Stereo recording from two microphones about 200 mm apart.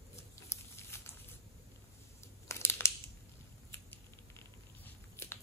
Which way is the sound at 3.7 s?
10° left (ahead or behind).